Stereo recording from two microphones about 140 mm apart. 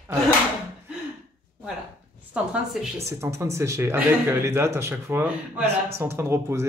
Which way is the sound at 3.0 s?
20° right (ahead or behind).